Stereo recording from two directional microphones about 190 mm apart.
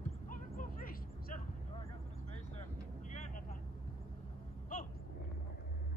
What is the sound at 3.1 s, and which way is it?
Vehicle, 45° left (ahead or behind).